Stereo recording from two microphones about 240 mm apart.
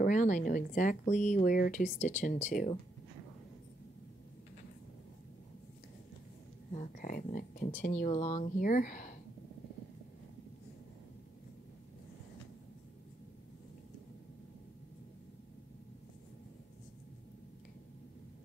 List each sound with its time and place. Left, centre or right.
0.0 s speech: left
6.7 s speech: left